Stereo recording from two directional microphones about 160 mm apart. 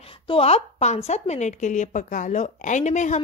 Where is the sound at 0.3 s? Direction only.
35° left (ahead or behind).